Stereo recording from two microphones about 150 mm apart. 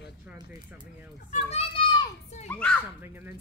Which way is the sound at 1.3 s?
45° left (ahead or behind).